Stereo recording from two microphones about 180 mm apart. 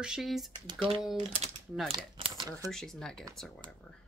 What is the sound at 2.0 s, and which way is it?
Crumpling, 30° right (ahead or behind).